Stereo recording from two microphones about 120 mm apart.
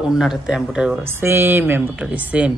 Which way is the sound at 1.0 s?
20° right (ahead or behind).